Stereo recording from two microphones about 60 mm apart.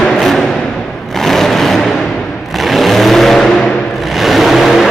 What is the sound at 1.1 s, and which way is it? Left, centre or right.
Vehicle, centre.